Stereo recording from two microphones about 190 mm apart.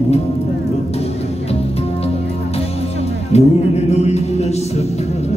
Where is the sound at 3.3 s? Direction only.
35° left (ahead or behind).